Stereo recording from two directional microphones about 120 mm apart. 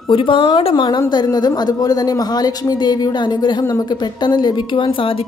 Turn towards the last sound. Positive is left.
turn(degrees=50)  # may be behind; listen again after turning